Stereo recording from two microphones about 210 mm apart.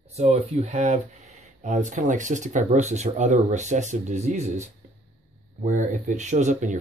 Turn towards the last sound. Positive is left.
turn(degrees=-35)  # may be behind; listen again after turning